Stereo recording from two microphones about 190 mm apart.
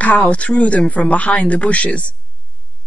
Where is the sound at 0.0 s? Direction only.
5° left (ahead or behind).